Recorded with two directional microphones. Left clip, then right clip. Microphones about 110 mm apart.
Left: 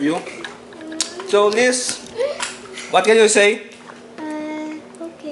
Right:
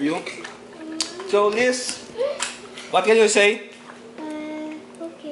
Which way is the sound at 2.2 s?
15° left (ahead or behind).